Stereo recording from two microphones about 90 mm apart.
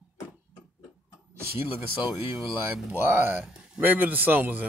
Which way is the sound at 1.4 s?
25° right (ahead or behind).